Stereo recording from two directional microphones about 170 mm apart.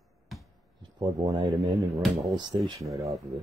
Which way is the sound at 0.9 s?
25° right (ahead or behind).